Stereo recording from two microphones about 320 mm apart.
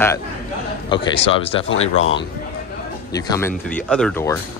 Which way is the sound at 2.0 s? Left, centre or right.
Left.